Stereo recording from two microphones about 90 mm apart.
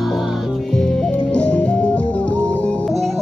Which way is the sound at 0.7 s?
5° left (ahead or behind).